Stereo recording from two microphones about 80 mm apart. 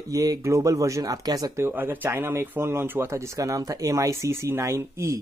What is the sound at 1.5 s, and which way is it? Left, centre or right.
Speech, right.